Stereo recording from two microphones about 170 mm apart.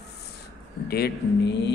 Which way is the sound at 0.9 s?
80° left.